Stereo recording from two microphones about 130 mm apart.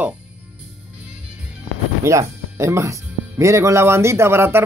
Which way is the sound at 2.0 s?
20° right (ahead or behind).